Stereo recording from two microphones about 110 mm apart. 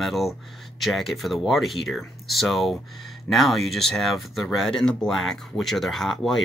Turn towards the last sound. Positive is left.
turn(degrees=0)  # may be behind; listen again after turning